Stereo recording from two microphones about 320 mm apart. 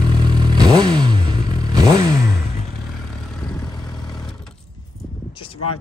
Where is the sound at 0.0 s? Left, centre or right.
Centre.